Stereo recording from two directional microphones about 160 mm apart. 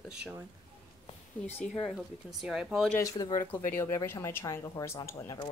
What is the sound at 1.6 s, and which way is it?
Speech, centre (ahead or behind).